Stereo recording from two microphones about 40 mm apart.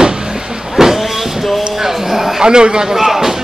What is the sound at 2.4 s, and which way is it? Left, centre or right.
Speech, right.